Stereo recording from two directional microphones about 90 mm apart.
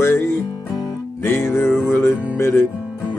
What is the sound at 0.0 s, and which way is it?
Music, 30° left (ahead or behind).